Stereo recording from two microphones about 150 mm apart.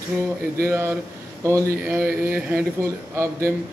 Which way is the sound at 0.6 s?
15° right (ahead or behind).